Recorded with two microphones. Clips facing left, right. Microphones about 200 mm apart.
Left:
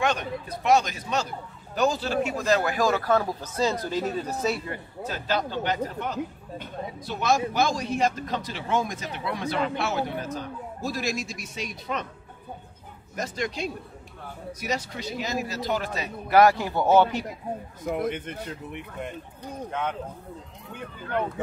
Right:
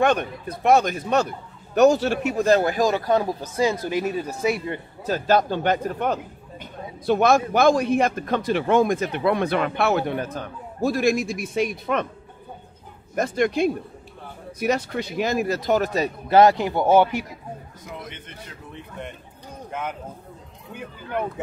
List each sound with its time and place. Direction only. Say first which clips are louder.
0.0 s speech: right 6 dB; 55° right (ahead or behind)
1.8 s speech: right 7 dB; 70° right (ahead or behind)
2.8 s speech: right 3 dB; 20° right (ahead or behind)
5.0 s a man's voice: right 8 dB; 45° right (ahead or behind)
13.1 s speech: right 9 dB; 55° right (ahead or behind)
16.3 s speech: right 3 dB; 25° right (ahead or behind)
17.8 s a man's voice: left 11 dB; 50° left (ahead or behind)
19.7 s speech: even; 5° right (ahead or behind)